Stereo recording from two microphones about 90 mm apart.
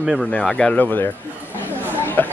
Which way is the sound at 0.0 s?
5° right (ahead or behind).